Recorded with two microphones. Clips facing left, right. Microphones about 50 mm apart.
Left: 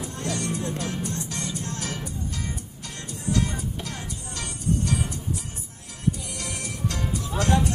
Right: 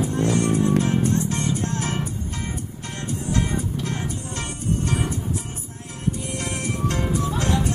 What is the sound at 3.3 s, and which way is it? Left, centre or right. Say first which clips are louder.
Music: right 1 dB; right.